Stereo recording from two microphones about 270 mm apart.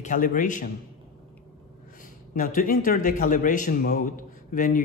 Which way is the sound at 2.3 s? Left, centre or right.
Left.